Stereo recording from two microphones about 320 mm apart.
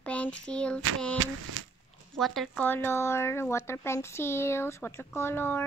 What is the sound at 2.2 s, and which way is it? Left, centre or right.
Speech, centre.